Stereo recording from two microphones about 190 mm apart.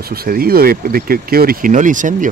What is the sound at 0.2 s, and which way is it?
Speech, 50° right (ahead or behind).